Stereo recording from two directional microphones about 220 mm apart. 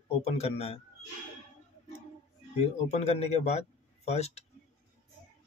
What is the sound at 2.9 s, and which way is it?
A man's voice, 30° left (ahead or behind).